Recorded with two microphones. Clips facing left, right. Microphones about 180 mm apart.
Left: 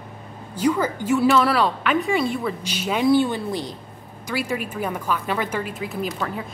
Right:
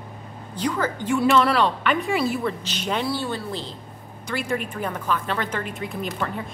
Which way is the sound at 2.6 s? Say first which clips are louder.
Left 4 dB; 10° left (ahead or behind).